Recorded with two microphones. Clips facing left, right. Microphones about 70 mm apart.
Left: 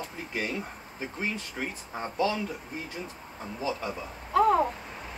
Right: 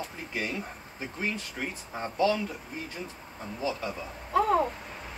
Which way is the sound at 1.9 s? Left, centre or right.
Centre.